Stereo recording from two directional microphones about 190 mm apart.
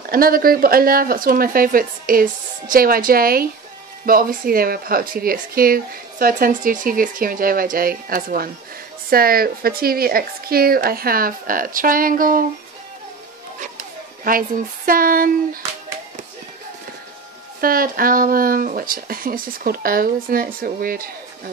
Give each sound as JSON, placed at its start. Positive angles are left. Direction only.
{"t": 0.1, "sound": "speech", "side_deg": -50}
{"t": 13.6, "sound": "speech", "side_deg": -50}
{"t": 17.6, "sound": "speech", "side_deg": -50}